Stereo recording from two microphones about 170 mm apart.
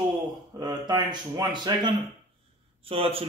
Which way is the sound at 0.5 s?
25° right (ahead or behind).